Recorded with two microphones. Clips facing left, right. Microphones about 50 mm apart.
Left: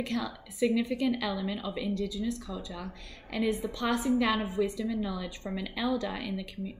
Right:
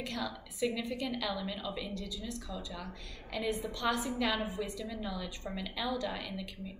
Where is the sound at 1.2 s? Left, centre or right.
Left.